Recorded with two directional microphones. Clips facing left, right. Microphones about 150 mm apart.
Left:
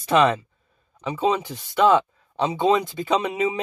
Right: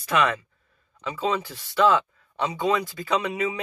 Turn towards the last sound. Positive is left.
turn(degrees=20)  # may be behind; listen again after turning